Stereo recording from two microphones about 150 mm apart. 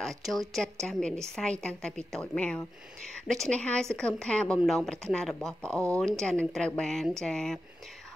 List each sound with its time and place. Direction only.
0.0 s a woman's voice: centre (ahead or behind)